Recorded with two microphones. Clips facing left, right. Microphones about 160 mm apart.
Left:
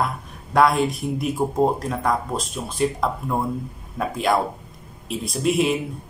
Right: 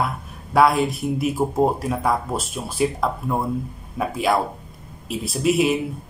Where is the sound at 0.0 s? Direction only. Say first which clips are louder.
Even; 5° right (ahead or behind).